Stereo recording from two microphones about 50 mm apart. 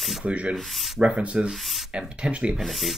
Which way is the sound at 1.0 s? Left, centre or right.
Right.